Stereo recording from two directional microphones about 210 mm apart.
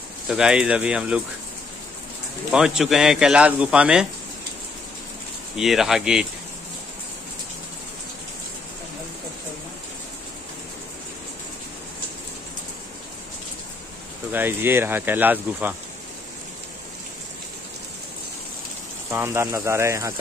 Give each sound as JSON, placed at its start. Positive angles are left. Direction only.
{"t": 0.3, "sound": "speech", "side_deg": -5}
{"t": 2.5, "sound": "speech", "side_deg": -5}
{"t": 5.6, "sound": "speech", "side_deg": 0}
{"t": 14.3, "sound": "speech", "side_deg": -10}
{"t": 19.0, "sound": "speech", "side_deg": -10}